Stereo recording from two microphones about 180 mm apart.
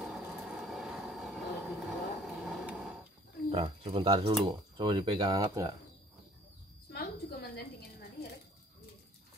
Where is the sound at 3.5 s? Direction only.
35° right (ahead or behind).